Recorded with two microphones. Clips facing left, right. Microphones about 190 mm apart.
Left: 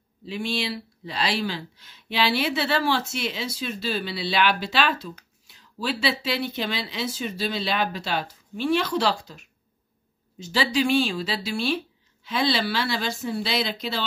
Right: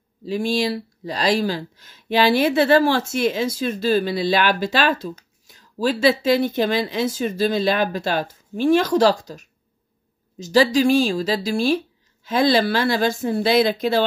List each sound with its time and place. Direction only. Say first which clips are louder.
0.2 s speech: right 7 dB; 40° right (ahead or behind)